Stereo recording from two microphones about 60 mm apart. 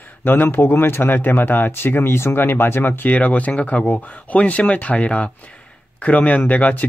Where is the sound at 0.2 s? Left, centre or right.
Left.